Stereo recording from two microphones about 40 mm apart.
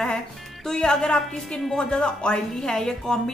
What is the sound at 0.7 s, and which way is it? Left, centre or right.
A woman's voice, centre.